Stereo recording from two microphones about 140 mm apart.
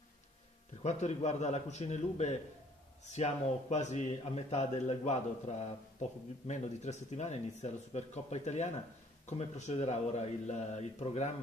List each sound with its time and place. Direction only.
0.8 s a man's voice: 55° left (ahead or behind)
3.7 s a man's voice: 55° left (ahead or behind)